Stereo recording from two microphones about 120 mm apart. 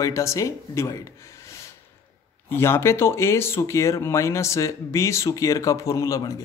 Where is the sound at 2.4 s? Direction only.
20° left (ahead or behind).